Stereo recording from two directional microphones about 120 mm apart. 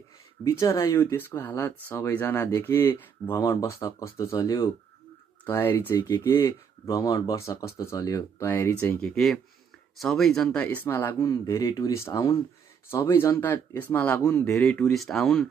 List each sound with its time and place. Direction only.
0.4 s speech: 25° left (ahead or behind)
5.4 s speech: 15° left (ahead or behind)
7.0 s speech: 30° left (ahead or behind)
9.0 s speech: 5° left (ahead or behind)